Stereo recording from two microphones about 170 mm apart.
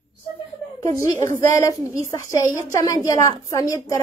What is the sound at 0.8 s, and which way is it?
A woman's voice, 15° left (ahead or behind).